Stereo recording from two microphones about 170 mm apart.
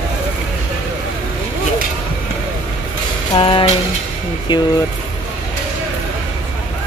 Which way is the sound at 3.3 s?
30° left (ahead or behind).